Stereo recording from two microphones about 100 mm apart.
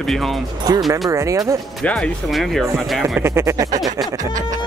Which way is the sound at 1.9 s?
15° left (ahead or behind).